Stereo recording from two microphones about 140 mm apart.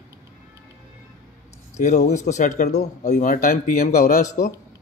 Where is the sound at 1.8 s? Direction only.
55° left (ahead or behind).